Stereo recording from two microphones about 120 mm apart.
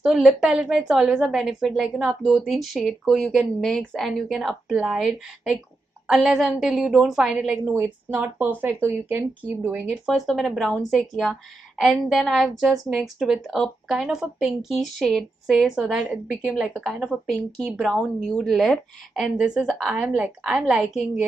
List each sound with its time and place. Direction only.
0.0 s speech: 5° right (ahead or behind)
9.7 s speech: 5° right (ahead or behind)
17.3 s speech: 5° left (ahead or behind)